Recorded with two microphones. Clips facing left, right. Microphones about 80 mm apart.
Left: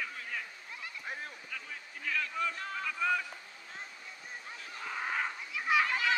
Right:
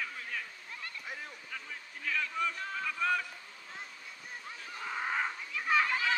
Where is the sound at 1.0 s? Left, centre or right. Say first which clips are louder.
Left 4 dB; left.